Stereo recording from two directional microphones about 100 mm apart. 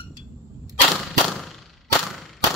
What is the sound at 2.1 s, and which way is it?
Clang, centre (ahead or behind).